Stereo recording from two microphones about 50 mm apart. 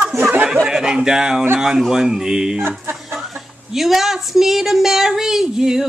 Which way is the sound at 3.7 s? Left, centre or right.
Centre.